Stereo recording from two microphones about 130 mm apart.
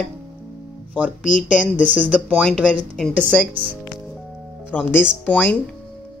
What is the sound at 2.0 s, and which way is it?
Speech, 5° left (ahead or behind).